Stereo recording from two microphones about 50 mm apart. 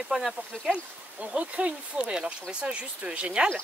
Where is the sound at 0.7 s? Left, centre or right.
Right.